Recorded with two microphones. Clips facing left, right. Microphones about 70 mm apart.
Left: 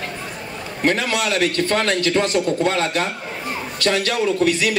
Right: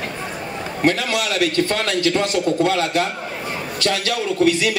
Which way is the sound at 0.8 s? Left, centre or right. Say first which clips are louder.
Even; left.